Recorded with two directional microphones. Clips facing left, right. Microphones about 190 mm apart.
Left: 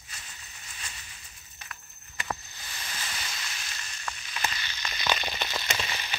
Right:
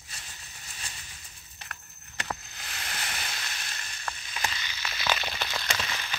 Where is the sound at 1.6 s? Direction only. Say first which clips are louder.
Right 1 dB; 65° right (ahead or behind).